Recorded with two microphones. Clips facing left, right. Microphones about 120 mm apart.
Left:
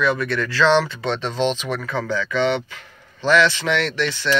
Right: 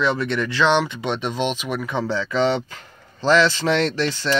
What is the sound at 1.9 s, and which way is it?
Speech, 30° right (ahead or behind).